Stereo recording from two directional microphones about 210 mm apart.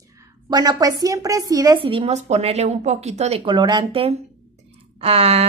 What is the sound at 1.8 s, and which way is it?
A woman's voice, 25° right (ahead or behind).